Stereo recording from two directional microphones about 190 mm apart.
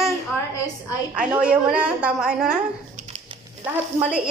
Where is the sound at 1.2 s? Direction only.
5° right (ahead or behind).